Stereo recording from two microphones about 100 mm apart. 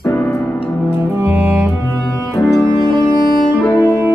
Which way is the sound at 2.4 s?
30° left (ahead or behind).